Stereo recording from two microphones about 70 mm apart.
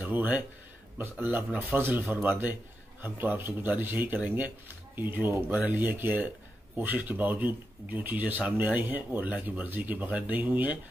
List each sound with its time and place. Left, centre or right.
0.0 s speech: right